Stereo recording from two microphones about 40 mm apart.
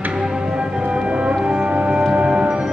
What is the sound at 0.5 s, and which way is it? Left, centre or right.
Music, right.